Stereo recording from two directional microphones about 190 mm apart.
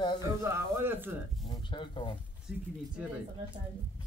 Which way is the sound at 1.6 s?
25° left (ahead or behind).